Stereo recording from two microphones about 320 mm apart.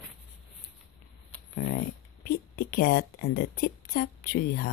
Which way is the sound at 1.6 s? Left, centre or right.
Left.